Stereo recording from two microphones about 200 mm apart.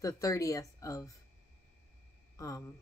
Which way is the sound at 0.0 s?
15° left (ahead or behind).